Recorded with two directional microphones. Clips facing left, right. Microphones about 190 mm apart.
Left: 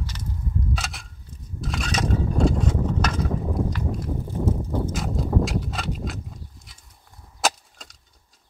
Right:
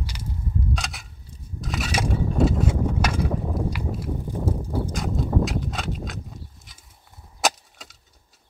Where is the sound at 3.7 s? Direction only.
10° right (ahead or behind).